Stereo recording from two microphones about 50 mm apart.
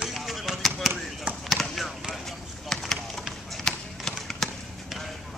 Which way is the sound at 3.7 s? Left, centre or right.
Centre.